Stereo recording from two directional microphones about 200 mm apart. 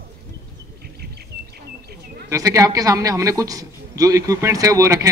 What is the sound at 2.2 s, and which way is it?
A man's voice, 15° right (ahead or behind).